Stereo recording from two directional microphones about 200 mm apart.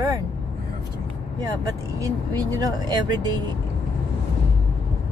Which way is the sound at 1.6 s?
15° right (ahead or behind).